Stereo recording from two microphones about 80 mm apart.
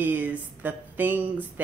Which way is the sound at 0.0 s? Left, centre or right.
Right.